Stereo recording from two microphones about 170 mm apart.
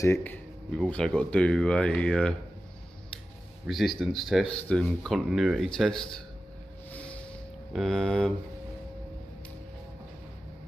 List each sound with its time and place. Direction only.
0.0 s speech: 15° left (ahead or behind)
3.6 s speech: centre (ahead or behind)
7.7 s speech: centre (ahead or behind)